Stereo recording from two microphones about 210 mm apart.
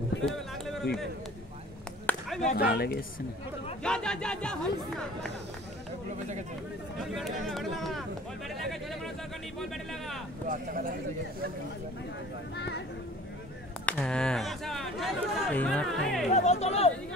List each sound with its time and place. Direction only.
0.2 s a sound: centre (ahead or behind)
2.0 s a sound: centre (ahead or behind)
2.7 s a woman's voice: 45° left (ahead or behind)
3.8 s speech: 5° left (ahead or behind)
7.1 s speech: centre (ahead or behind)
10.5 s a man's voice: 40° right (ahead or behind)
12.5 s a sound: 55° left (ahead or behind)
13.8 s speech: 5° left (ahead or behind)
16.3 s speech: 35° left (ahead or behind)